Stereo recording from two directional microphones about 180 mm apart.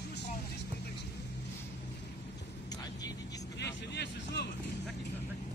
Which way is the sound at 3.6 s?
70° left (ahead or behind).